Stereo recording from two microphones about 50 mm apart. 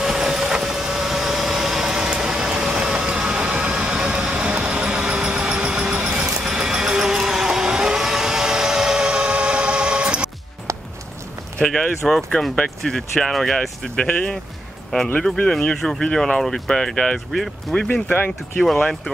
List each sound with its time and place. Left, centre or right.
0.0 s vehicle: centre
11.6 s speech: centre
14.0 s speech: centre
15.8 s speech: centre
17.7 s speech: centre
18.0 s speech: left